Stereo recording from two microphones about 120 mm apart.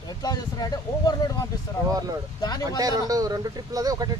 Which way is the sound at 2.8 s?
30° right (ahead or behind).